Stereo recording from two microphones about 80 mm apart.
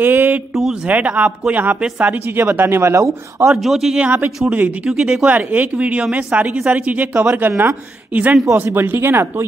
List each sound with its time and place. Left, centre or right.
0.0 s a woman's voice: right
2.4 s speech: right
3.6 s a man's voice: centre
4.5 s a woman's voice: right
4.8 s speech: centre
5.3 s a woman's voice: right